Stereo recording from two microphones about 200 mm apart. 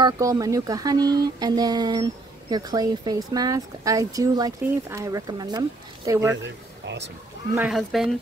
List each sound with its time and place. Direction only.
0.0 s speech: 15° right (ahead or behind)
7.5 s speech: 5° right (ahead or behind)